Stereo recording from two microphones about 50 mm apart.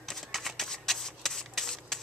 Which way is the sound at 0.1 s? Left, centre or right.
Centre.